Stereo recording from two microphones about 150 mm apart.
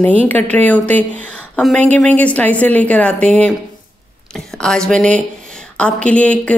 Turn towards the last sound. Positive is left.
turn(degrees=10)  # may be behind; listen again after turning